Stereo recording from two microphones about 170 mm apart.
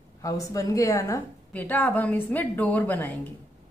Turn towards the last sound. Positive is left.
turn(degrees=10)  # may be behind; listen again after turning